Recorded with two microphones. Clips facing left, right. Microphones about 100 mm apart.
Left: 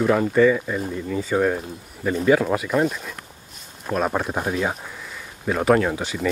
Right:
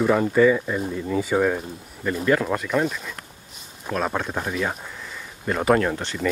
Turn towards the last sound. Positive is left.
turn(degrees=5)  # may be behind; listen again after turning